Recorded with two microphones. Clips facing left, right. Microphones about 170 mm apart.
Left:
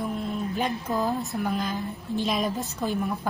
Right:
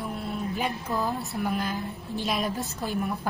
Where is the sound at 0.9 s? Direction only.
20° left (ahead or behind).